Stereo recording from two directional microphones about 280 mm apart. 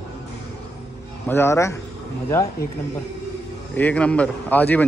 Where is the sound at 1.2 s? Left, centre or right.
Centre.